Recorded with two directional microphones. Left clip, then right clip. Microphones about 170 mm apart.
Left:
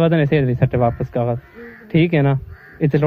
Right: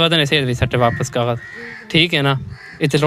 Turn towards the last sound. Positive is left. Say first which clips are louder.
# right 2 dB
turn(degrees=-20)  # may be behind; listen again after turning